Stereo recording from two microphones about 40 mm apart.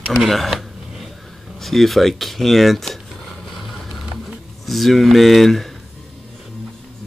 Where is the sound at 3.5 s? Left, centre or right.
Centre.